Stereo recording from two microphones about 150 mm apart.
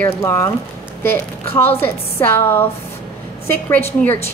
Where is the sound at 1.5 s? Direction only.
15° left (ahead or behind).